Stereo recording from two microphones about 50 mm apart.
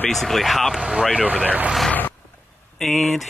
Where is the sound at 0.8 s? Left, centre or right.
Centre.